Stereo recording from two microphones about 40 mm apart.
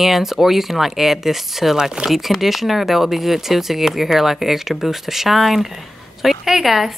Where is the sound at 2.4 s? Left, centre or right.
Centre.